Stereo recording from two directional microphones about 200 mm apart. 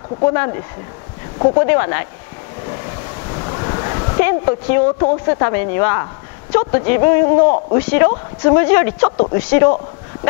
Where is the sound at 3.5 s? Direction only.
30° left (ahead or behind).